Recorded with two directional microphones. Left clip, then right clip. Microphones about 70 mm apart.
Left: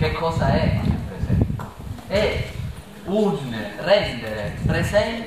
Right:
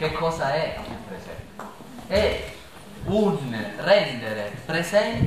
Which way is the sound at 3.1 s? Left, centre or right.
Right.